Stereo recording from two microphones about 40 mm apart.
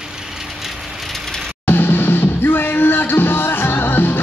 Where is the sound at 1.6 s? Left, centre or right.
Left.